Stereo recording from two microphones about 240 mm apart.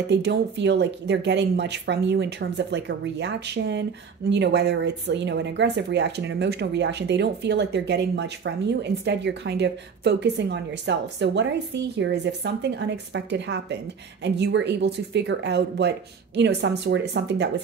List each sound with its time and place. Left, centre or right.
0.1 s speech: right